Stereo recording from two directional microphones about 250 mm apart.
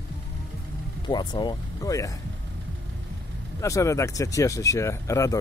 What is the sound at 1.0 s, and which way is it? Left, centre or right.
Speech, centre.